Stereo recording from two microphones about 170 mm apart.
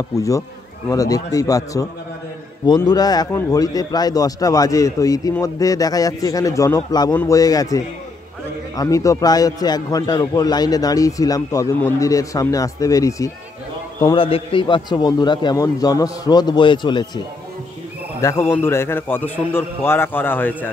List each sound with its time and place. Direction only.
0.8 s a man's voice: 20° left (ahead or behind)
14.0 s a man's voice: 30° left (ahead or behind)
18.2 s a man's voice: 15° left (ahead or behind)